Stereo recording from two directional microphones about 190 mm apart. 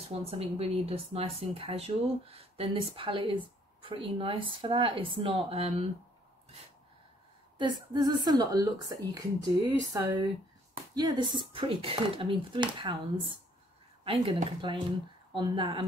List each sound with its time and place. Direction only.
0.1 s speech: 30° right (ahead or behind)
7.5 s speech: 25° right (ahead or behind)